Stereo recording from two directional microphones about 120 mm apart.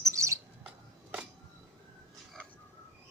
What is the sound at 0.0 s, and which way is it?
Bird, 25° right (ahead or behind).